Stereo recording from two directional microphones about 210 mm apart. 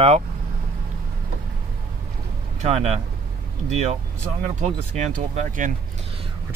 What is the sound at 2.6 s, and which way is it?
Speech, 35° right (ahead or behind).